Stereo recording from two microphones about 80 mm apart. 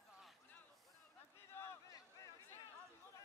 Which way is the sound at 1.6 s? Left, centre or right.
Left.